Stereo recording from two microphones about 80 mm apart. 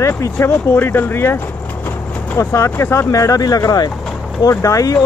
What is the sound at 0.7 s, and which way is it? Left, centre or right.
Speech, left.